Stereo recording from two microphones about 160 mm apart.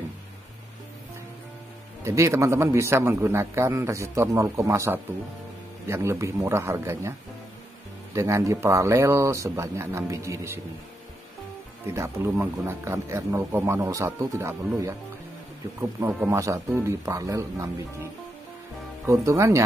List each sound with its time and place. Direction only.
2.0 s a man's voice: 20° right (ahead or behind)
11.8 s a man's voice: 15° right (ahead or behind)
15.8 s speech: 10° right (ahead or behind)
19.0 s speech: 20° right (ahead or behind)